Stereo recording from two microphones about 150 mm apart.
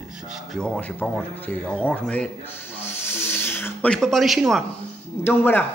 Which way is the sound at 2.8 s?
15° left (ahead or behind).